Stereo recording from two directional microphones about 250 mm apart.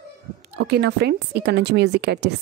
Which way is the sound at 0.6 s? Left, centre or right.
Right.